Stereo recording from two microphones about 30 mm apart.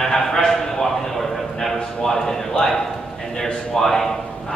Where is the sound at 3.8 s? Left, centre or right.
Centre.